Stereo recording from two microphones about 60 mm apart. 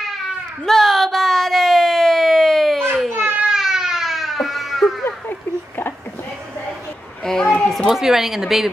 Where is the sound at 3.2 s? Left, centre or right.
Right.